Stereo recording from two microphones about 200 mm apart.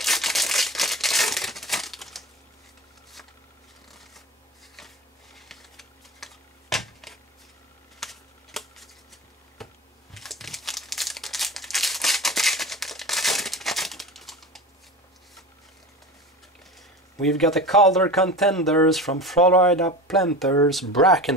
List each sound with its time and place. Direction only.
0.0 s crumpling: centre (ahead or behind)
4.7 s a sound: centre (ahead or behind)
9.6 s computer keyboard: centre (ahead or behind)
10.1 s crumpling: centre (ahead or behind)
17.2 s speech: centre (ahead or behind)